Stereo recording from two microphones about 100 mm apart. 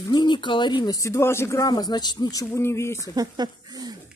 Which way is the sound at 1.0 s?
25° left (ahead or behind).